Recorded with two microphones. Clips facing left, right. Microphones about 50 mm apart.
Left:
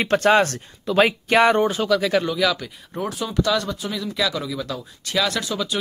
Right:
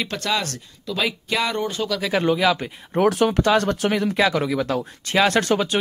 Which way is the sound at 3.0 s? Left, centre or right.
Right.